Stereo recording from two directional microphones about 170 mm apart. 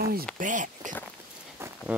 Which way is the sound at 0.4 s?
50° right (ahead or behind).